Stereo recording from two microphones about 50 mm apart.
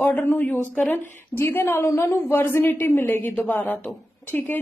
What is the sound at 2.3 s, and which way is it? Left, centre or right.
A woman's voice, left.